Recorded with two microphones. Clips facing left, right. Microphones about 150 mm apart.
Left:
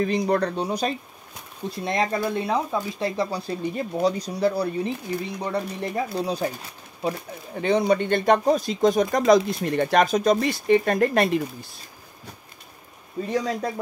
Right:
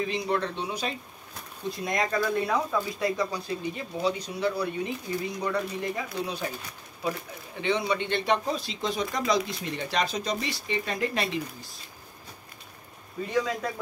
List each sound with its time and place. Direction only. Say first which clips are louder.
0.0 s speech: left 6 dB; 45° left (ahead or behind)
1.9 s speech: left 3 dB; 30° left (ahead or behind); by 11.4 s 50° left (ahead or behind)
13.3 s speech: left 2 dB; 35° left (ahead or behind)